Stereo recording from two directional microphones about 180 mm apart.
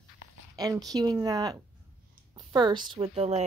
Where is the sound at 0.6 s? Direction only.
20° right (ahead or behind).